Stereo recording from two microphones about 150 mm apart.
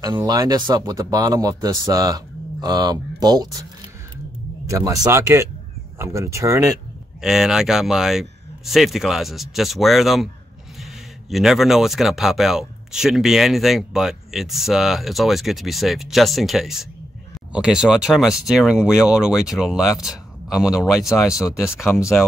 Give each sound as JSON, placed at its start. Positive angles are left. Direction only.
{"t": 0.0, "sound": "speech", "side_deg": -25}
{"t": 4.6, "sound": "speech", "side_deg": -20}
{"t": 7.2, "sound": "speech", "side_deg": -5}